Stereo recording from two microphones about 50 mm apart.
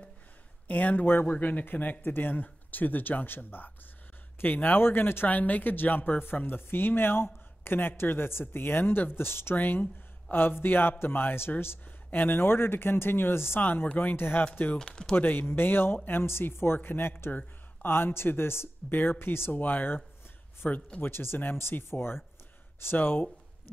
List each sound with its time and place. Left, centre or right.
0.7 s speech: left
14.8 s speech: centre
15.1 s speech: left
17.8 s speech: left
19.6 s speech: left
21.0 s speech: left